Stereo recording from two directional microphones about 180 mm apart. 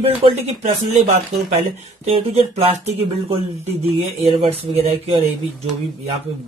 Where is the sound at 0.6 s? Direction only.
45° right (ahead or behind).